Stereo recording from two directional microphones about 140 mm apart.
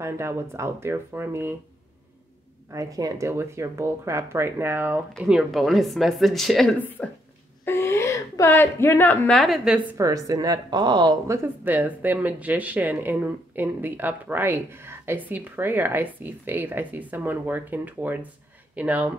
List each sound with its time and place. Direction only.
0.0 s speech: 20° right (ahead or behind)
2.7 s speech: 25° right (ahead or behind)
5.1 s speech: centre (ahead or behind)
6.8 s a woman's voice: 15° left (ahead or behind)
9.4 s speech: centre (ahead or behind)
9.9 s speech: 25° right (ahead or behind)